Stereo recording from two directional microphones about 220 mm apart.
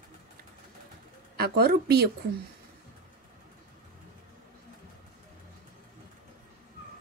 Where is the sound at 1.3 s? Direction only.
45° right (ahead or behind).